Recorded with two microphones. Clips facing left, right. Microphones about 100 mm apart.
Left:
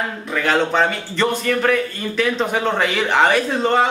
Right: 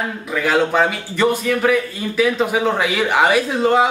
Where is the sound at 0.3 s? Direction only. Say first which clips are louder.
Right 1 dB; 5° right (ahead or behind).